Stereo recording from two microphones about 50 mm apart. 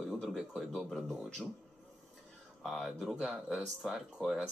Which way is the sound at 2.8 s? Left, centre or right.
Centre.